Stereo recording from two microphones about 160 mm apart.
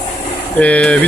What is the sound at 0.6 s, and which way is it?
Speech, 10° left (ahead or behind).